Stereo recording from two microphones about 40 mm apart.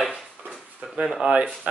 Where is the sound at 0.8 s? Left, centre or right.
Right.